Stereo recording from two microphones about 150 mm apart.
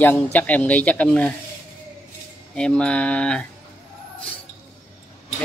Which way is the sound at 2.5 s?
5° left (ahead or behind).